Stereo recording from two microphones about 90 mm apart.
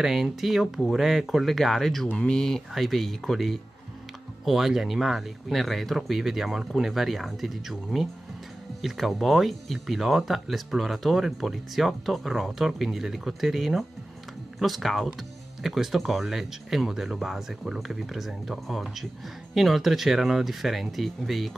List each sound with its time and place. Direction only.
0.0 s speech: centre (ahead or behind)